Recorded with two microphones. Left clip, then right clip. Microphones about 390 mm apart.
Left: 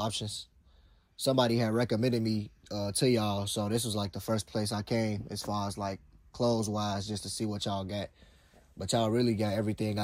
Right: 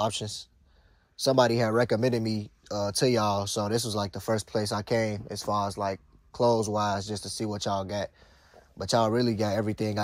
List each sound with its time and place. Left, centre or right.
0.0 s speech: centre